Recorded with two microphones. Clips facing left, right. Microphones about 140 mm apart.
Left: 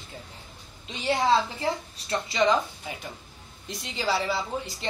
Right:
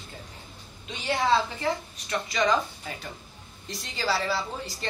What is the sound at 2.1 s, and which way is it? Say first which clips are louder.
Speech: left 2 dB; 25° left (ahead or behind).